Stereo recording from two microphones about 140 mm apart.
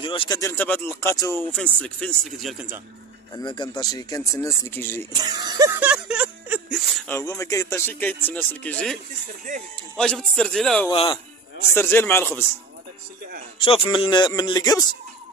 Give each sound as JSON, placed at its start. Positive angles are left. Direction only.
{"t": 0.0, "sound": "speech", "side_deg": 40}
{"t": 0.3, "sound": "speech", "side_deg": 20}
{"t": 1.5, "sound": "speech", "side_deg": 5}
{"t": 3.3, "sound": "speech", "side_deg": 35}
{"t": 5.1, "sound": "speech", "side_deg": -30}
{"t": 5.8, "sound": "a sound", "side_deg": -10}
{"t": 7.1, "sound": "speech", "side_deg": 20}
{"t": 9.9, "sound": "a man's voice", "side_deg": 5}
{"t": 10.9, "sound": "speech", "side_deg": 40}
{"t": 11.7, "sound": "speech", "side_deg": 15}
{"t": 13.7, "sound": "speech", "side_deg": 35}